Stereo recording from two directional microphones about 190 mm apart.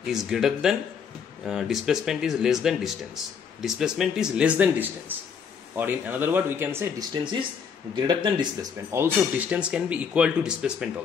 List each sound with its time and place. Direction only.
0.0 s speech: centre (ahead or behind)
7.9 s speech: 25° right (ahead or behind)
8.9 s speech: 10° right (ahead or behind)